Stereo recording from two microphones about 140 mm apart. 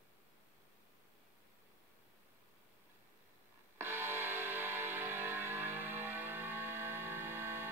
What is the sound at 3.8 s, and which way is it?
Music, 15° right (ahead or behind).